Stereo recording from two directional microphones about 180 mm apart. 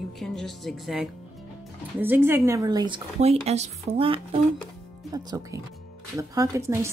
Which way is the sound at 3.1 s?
35° right (ahead or behind).